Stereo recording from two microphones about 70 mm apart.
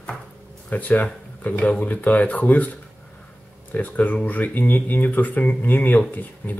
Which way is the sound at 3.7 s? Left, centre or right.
Left.